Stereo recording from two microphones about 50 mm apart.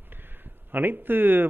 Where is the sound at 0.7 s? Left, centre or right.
Right.